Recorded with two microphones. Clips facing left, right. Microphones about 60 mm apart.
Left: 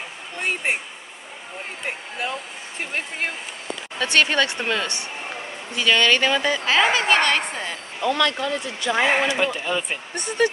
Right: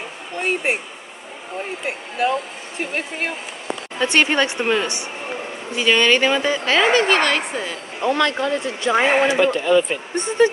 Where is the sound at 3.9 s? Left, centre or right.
Right.